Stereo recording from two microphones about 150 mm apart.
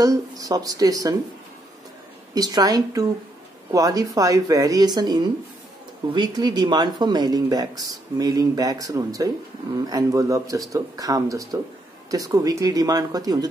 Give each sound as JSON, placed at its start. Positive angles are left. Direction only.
{"t": 0.0, "sound": "speech", "side_deg": -25}
{"t": 2.3, "sound": "speech", "side_deg": -25}